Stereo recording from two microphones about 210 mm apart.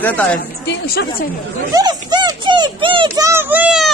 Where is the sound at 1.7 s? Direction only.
20° right (ahead or behind).